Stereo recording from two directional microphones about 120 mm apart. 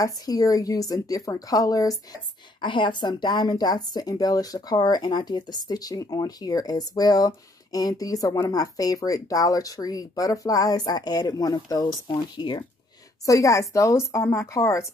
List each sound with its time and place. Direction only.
0.0 s a woman's voice: 30° left (ahead or behind)
2.6 s a woman's voice: 40° left (ahead or behind)
13.2 s a woman's voice: 25° left (ahead or behind)